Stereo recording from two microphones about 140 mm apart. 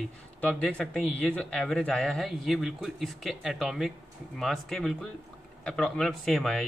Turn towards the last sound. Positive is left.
turn(degrees=5)  # may be behind; listen again after turning